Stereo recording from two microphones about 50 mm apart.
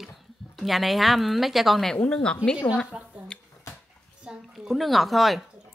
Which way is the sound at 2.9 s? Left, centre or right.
Centre.